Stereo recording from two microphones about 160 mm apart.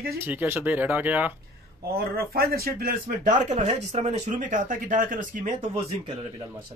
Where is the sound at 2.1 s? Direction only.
75° right (ahead or behind); by 5.7 s 55° right (ahead or behind).